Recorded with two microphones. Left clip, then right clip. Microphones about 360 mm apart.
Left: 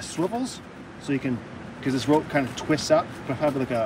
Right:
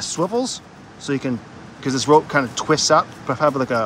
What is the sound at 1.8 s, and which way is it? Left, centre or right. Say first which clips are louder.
Speech: right 8 dB; centre.